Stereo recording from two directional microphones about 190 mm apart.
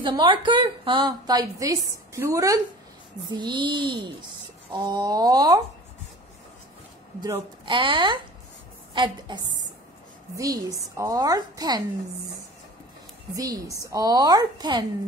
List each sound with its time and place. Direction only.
0.0 s a woman's voice: 25° right (ahead or behind)
7.2 s a woman's voice: 20° right (ahead or behind)
13.3 s a woman's voice: 20° right (ahead or behind)